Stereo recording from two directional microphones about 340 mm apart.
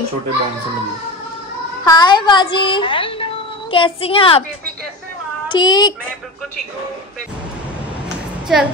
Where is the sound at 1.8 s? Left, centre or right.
Centre.